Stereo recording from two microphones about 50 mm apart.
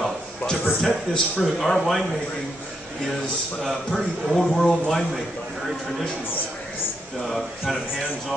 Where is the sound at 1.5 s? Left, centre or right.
Centre.